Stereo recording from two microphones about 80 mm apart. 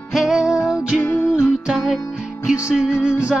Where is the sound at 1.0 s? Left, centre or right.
Left.